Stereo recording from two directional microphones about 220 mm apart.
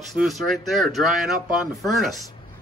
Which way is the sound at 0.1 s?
Centre (ahead or behind).